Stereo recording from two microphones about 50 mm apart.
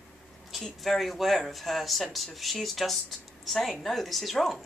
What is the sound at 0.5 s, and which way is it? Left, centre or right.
Speech, centre.